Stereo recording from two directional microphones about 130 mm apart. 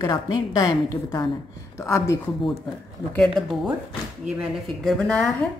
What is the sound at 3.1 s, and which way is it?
Speech, 5° left (ahead or behind).